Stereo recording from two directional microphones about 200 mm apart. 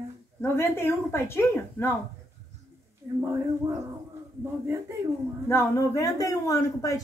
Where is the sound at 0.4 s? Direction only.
10° left (ahead or behind).